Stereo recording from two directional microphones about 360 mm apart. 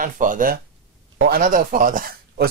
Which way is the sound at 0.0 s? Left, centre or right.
Right.